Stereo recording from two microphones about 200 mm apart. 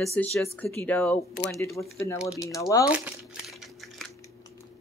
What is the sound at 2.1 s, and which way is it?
Speech, 5° right (ahead or behind).